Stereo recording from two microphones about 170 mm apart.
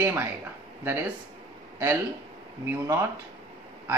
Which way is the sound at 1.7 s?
15° right (ahead or behind).